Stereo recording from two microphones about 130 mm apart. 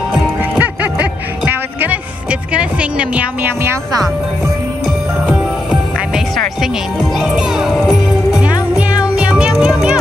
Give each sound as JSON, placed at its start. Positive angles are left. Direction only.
{"t": 0.6, "sound": "quack", "side_deg": -10}
{"t": 2.5, "sound": "speech", "side_deg": -10}
{"t": 5.7, "sound": "music", "side_deg": -5}